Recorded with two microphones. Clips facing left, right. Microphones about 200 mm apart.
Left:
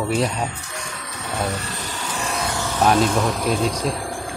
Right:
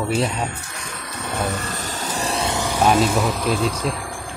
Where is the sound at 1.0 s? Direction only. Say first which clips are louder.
Right 1 dB; 50° right (ahead or behind); by 3.6 s centre (ahead or behind).